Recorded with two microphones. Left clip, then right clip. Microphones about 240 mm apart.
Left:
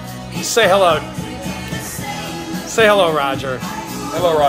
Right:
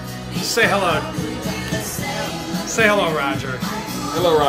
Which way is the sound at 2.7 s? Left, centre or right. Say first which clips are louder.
Left 5 dB; left.